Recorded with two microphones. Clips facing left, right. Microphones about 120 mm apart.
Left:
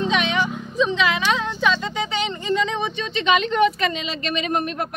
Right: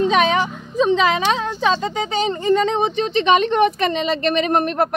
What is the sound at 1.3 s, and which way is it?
Speech, 35° right (ahead or behind).